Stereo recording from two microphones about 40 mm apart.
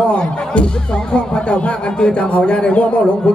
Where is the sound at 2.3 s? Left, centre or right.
Left.